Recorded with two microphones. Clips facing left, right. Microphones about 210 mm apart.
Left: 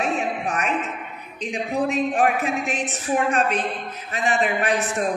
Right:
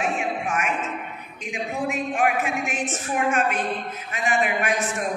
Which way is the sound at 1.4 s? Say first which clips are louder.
Left 4 dB; 35° left (ahead or behind).